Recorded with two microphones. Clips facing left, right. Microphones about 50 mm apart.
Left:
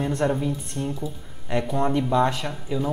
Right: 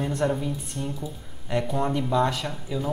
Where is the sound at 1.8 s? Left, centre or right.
Centre.